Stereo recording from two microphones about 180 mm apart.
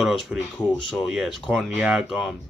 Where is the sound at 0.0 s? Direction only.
Centre (ahead or behind).